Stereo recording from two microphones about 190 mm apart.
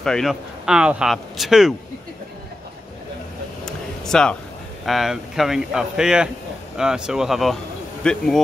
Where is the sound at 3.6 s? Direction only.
5° left (ahead or behind).